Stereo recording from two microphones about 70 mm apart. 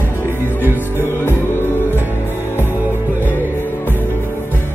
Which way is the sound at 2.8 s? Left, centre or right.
Right.